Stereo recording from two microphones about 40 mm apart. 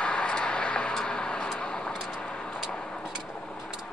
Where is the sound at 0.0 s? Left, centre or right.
Left.